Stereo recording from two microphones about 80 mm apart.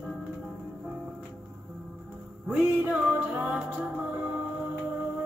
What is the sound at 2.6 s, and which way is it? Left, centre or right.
Music, centre.